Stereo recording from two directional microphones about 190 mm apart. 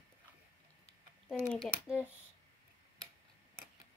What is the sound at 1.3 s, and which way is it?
Speech, 5° left (ahead or behind).